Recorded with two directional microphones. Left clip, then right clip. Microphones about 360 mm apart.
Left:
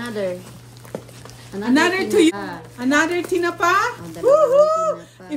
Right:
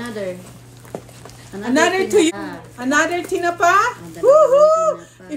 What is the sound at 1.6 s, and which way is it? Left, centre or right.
A woman's voice, centre.